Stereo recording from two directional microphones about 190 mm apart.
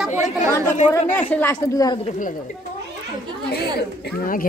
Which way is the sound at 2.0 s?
45° left (ahead or behind).